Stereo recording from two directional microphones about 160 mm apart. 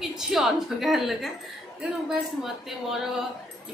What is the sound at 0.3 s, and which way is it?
A woman's voice, centre (ahead or behind).